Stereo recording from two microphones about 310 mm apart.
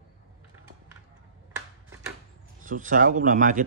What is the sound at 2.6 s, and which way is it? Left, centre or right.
Speech, right.